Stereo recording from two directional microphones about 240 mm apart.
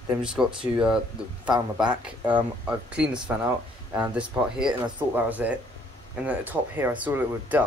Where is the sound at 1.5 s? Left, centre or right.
Centre.